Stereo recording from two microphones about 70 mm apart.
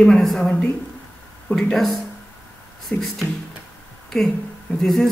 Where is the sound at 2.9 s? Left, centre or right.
Left.